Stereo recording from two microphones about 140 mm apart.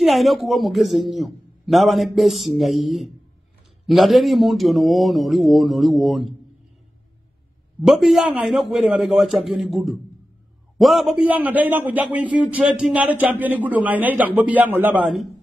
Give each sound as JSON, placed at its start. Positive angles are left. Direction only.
{"t": 0.0, "sound": "a man's voice", "side_deg": 0}
{"t": 7.8, "sound": "a man's voice", "side_deg": 0}
{"t": 11.2, "sound": "speech", "side_deg": -10}